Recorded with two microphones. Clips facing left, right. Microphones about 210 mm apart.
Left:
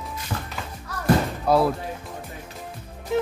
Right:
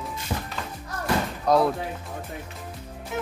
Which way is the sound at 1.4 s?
5° left (ahead or behind).